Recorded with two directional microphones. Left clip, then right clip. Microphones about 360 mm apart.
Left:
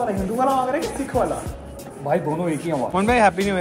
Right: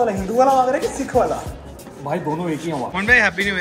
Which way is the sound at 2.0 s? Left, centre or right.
Centre.